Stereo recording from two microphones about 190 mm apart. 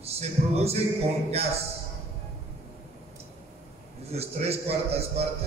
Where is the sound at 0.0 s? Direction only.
35° right (ahead or behind).